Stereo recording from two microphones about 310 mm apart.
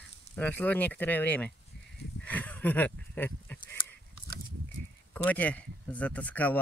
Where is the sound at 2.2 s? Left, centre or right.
Centre.